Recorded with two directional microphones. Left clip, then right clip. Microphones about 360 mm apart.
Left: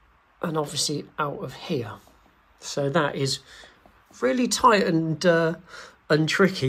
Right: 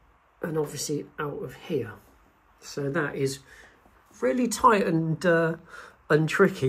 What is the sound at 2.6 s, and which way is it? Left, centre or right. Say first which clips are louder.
Speech: left 5 dB; centre.